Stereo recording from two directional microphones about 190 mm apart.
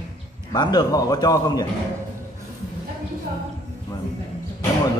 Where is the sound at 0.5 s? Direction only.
20° left (ahead or behind).